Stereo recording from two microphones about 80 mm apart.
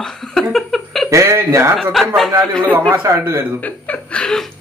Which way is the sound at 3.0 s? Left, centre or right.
Right.